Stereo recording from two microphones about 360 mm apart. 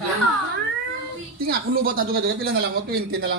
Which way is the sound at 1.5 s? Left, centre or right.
Right.